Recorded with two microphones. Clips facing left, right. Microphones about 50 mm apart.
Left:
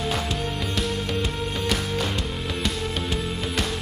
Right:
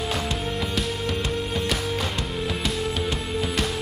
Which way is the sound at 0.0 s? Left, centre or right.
Centre.